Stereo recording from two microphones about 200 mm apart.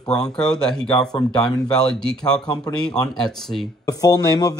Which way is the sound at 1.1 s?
20° left (ahead or behind).